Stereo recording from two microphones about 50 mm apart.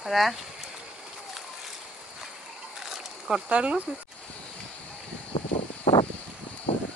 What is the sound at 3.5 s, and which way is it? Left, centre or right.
Speech, right.